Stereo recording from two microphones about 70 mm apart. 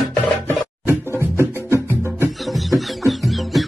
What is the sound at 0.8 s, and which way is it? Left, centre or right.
Music, right.